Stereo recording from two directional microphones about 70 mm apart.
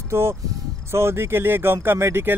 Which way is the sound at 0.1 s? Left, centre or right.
Right.